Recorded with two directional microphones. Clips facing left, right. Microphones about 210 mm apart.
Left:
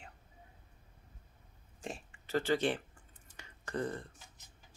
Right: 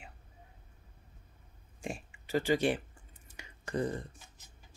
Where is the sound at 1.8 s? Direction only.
10° right (ahead or behind).